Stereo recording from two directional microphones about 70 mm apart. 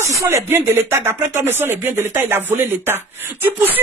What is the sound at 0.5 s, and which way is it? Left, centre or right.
Speech, right.